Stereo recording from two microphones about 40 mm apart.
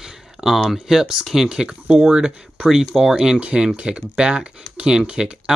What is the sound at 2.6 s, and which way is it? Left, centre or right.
Speech, centre.